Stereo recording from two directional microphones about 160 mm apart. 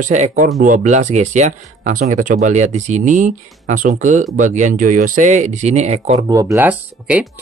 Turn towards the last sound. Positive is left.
turn(degrees=-10)  # may be behind; listen again after turning